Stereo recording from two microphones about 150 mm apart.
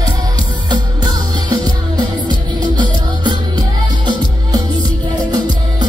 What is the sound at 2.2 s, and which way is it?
Music, 30° right (ahead or behind).